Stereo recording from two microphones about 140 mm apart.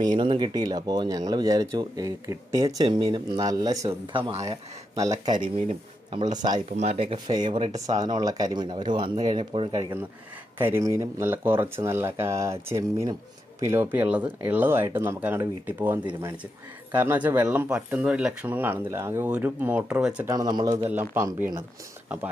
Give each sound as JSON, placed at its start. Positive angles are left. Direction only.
{"t": 0.0, "sound": "speech", "side_deg": -35}
{"t": 4.1, "sound": "speech", "side_deg": -45}
{"t": 4.9, "sound": "speech", "side_deg": -25}
{"t": 5.7, "sound": "speech", "side_deg": -50}
{"t": 6.3, "sound": "speech", "side_deg": -30}
{"t": 6.8, "sound": "speech", "side_deg": -45}
{"t": 7.2, "sound": "speech", "side_deg": -30}
{"t": 10.6, "sound": "speech", "side_deg": -20}
{"t": 20.2, "sound": "speech", "side_deg": -30}
{"t": 20.8, "sound": "speech", "side_deg": -15}